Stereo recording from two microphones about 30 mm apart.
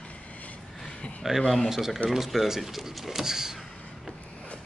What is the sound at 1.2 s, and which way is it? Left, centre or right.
Speech, centre.